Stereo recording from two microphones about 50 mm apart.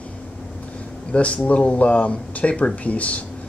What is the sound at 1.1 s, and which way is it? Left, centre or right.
Speech, left.